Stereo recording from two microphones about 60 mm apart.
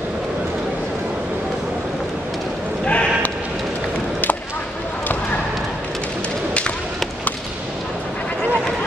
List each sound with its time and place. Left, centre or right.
2.8 s sheep: centre